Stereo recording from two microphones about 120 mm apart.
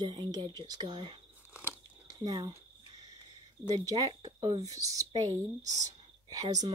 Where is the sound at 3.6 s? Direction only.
35° right (ahead or behind).